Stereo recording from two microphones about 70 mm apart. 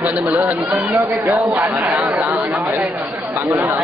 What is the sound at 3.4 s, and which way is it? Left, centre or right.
Speech, right.